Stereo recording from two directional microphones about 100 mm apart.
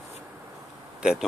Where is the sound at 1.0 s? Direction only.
10° right (ahead or behind).